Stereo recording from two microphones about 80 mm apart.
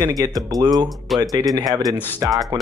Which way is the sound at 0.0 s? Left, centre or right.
Right.